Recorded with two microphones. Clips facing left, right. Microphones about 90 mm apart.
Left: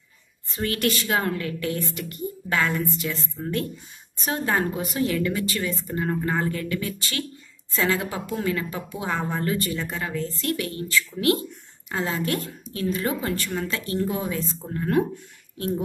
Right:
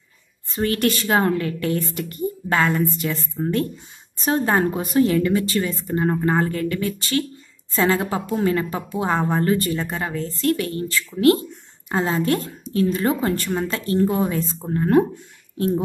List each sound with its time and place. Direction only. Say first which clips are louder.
0.6 s a woman's voice: right 4 dB; 35° right (ahead or behind)
14.0 s a woman's voice: right 6 dB; 45° right (ahead or behind)